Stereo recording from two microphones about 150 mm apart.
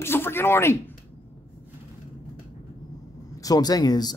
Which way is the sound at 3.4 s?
25° left (ahead or behind).